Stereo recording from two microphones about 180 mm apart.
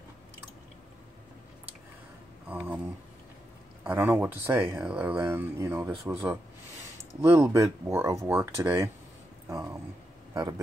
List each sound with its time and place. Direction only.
2.4 s speech: 10° right (ahead or behind)
3.8 s speech: 10° right (ahead or behind)